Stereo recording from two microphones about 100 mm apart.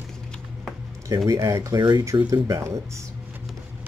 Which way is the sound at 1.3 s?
30° right (ahead or behind).